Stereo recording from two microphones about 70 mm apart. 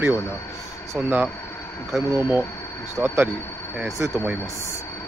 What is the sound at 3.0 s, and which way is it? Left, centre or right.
Speech, centre.